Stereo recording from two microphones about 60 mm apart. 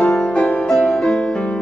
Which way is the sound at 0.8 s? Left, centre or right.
Centre.